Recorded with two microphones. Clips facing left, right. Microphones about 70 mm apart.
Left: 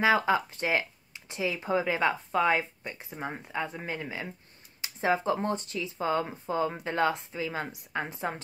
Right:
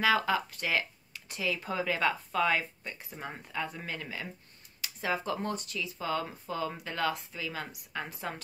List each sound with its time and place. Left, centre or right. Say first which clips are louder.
0.0 s speech: left 3 dB; left